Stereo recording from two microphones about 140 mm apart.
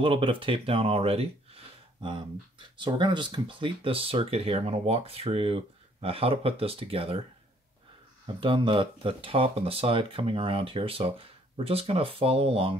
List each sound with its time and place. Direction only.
0.0 s speech: 40° right (ahead or behind)
2.8 s speech: 35° right (ahead or behind)
8.3 s speech: 35° right (ahead or behind)